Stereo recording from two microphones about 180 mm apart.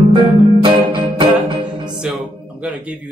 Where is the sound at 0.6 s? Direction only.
25° right (ahead or behind).